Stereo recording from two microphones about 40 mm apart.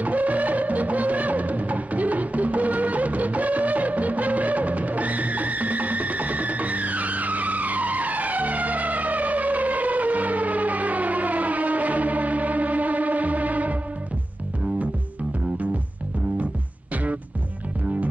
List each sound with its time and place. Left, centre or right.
0.0 s music: right
16.9 s music: right